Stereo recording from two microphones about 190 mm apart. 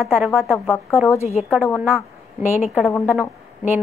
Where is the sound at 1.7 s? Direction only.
5° right (ahead or behind).